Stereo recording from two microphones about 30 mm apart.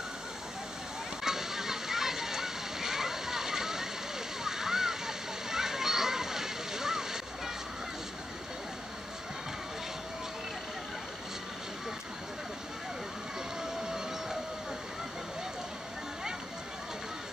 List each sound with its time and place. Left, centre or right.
1.2 s water: centre